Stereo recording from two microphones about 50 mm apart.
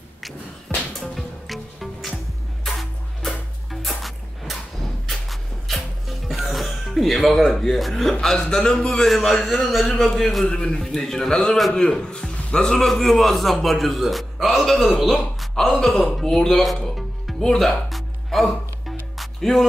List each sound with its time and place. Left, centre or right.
0.9 s music: centre
5.0 s music: centre
7.4 s a man's voice: centre
10.8 s a man's voice: centre
15.5 s a man's voice: centre
16.2 s music: centre